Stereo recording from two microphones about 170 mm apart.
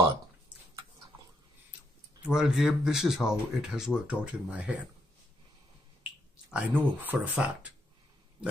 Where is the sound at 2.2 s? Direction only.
5° right (ahead or behind).